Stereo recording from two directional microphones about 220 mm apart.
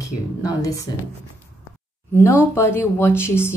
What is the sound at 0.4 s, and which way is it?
Speech, 15° left (ahead or behind).